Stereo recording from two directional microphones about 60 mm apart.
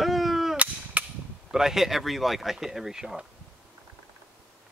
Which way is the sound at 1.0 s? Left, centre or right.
Right.